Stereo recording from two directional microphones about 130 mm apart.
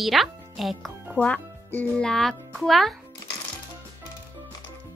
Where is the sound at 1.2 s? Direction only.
10° left (ahead or behind).